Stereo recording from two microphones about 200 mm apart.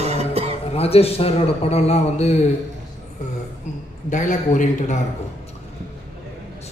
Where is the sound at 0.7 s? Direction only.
30° left (ahead or behind).